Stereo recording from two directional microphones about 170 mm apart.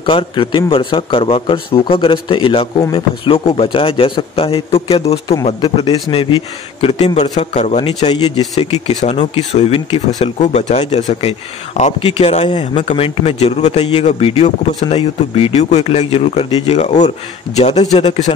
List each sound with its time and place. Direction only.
0.0 s a man's voice: 30° left (ahead or behind)
10.1 s a man's voice: 45° left (ahead or behind)
16.7 s a man's voice: 45° left (ahead or behind)